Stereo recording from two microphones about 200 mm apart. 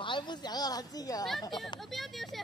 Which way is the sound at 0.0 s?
25° left (ahead or behind).